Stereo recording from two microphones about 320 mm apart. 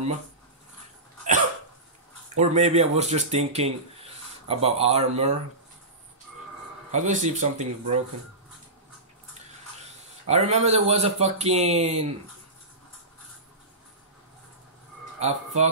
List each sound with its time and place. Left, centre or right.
2.2 s speech: right
6.9 s speech: right
10.2 s speech: centre
15.1 s speech: right